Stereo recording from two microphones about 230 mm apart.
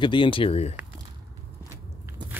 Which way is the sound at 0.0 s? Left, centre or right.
Left.